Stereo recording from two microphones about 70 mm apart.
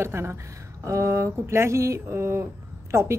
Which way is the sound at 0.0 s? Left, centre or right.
Right.